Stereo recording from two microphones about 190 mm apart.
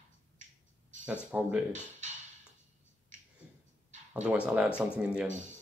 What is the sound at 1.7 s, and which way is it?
Speech, 40° right (ahead or behind).